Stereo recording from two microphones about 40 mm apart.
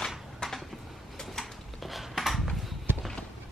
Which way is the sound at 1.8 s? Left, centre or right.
Centre.